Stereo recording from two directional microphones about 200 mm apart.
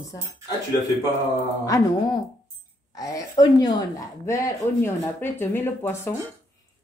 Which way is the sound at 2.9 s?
20° left (ahead or behind).